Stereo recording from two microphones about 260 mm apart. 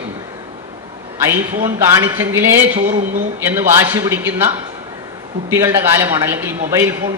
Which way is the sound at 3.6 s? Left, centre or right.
Centre.